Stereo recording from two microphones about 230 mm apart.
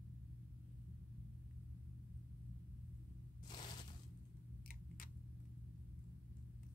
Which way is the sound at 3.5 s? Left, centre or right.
Centre.